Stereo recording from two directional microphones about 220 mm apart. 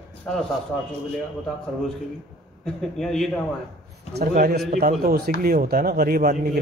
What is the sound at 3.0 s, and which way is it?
Speech, centre (ahead or behind).